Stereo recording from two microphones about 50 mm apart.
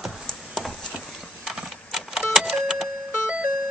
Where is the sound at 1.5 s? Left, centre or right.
Centre.